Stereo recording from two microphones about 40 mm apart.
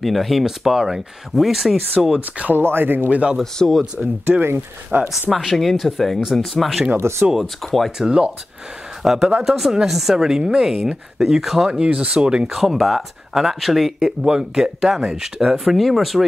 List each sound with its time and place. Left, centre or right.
0.0 s speech: centre
2.1 s speech: right
2.5 s speech: right
3.1 s speech: right
3.8 s speech: centre
4.3 s speech: right
5.4 s speech: centre
8.0 s speech: right
9.0 s speech: centre
11.8 s speech: right
12.4 s speech: centre
13.9 s speech: centre
15.6 s speech: centre